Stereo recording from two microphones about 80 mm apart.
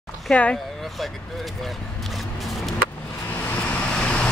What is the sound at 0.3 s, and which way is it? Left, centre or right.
Speech, centre.